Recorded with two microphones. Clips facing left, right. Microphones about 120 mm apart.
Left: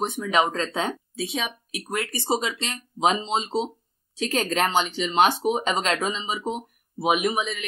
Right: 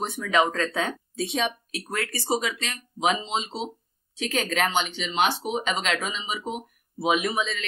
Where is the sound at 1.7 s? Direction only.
15° left (ahead or behind).